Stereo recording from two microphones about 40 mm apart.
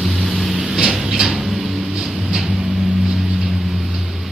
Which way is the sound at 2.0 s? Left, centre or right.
Centre.